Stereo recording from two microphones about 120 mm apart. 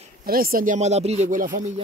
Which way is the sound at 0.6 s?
70° right (ahead or behind).